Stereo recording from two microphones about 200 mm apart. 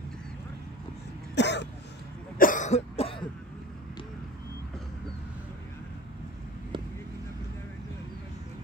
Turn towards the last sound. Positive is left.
turn(degrees=-25)  # may be behind; listen again after turning